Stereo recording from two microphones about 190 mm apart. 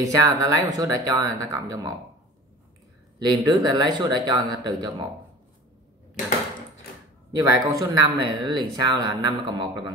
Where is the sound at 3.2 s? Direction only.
20° right (ahead or behind).